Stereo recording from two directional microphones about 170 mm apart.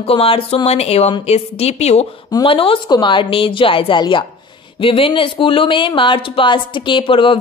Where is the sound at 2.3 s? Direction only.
30° left (ahead or behind).